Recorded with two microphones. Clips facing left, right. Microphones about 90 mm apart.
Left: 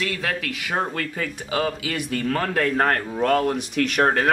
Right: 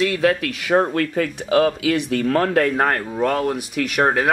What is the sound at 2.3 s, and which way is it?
Speech, 30° right (ahead or behind).